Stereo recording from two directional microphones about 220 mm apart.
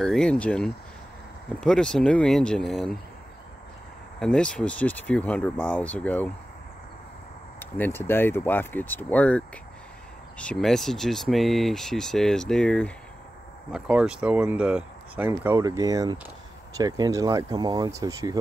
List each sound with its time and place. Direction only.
0.0 s speech: centre (ahead or behind)
4.2 s speech: 5° left (ahead or behind)
7.7 s speech: 10° left (ahead or behind); by 18.4 s 15° right (ahead or behind)